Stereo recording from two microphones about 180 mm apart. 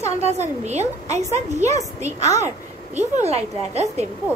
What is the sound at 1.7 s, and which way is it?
Speech, 15° left (ahead or behind).